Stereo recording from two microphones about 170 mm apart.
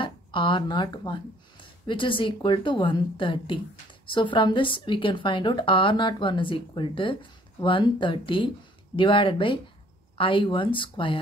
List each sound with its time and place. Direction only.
0.0 s speech: 30° left (ahead or behind)